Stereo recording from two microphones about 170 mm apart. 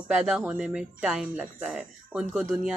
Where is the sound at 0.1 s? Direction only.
5° right (ahead or behind).